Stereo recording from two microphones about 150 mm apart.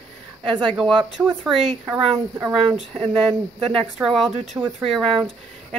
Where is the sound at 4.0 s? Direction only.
Centre (ahead or behind).